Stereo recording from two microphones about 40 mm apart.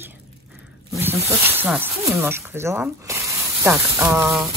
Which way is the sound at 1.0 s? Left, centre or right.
Right.